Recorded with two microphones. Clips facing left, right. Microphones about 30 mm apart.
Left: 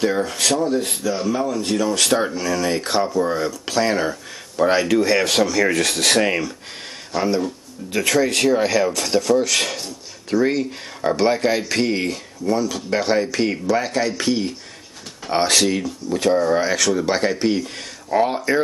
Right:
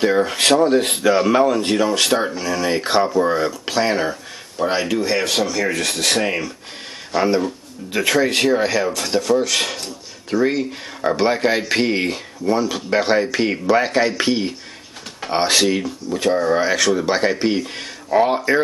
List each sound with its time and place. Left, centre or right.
0.0 s speech: right
2.0 s speech: centre
7.1 s speech: centre
8.5 s speech: centre